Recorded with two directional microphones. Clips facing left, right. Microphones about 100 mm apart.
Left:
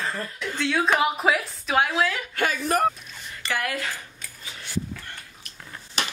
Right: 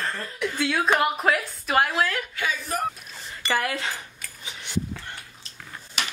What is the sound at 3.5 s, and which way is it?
Speech, 25° right (ahead or behind).